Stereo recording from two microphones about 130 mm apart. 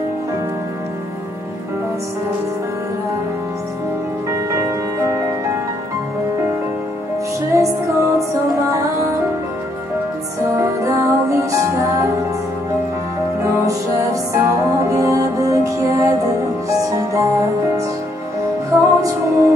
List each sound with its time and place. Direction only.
4.3 s music: 25° right (ahead or behind)
7.5 s music: 25° right (ahead or behind)
10.6 s music: 25° right (ahead or behind)
13.4 s music: 25° right (ahead or behind)